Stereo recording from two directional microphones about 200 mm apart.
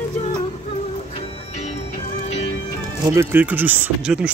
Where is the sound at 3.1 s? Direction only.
10° right (ahead or behind).